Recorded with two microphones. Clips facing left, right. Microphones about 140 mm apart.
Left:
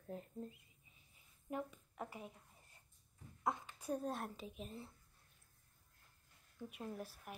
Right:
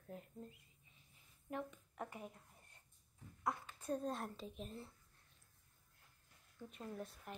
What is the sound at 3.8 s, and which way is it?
A woman's voice, 10° left (ahead or behind).